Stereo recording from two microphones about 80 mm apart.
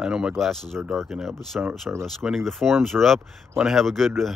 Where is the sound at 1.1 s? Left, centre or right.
Centre.